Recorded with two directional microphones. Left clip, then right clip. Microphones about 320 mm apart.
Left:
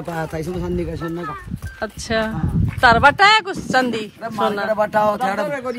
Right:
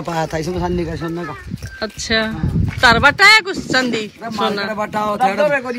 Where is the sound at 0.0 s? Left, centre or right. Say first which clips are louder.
Right 5 dB; centre.